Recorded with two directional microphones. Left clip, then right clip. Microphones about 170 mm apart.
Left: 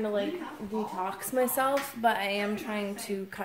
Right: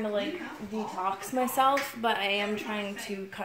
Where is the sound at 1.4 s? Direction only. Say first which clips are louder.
Right 1 dB; 5° left (ahead or behind).